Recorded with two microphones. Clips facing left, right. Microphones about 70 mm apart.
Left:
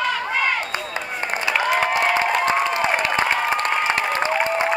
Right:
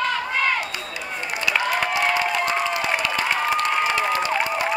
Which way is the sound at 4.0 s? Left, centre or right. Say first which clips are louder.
Left 1 dB; left.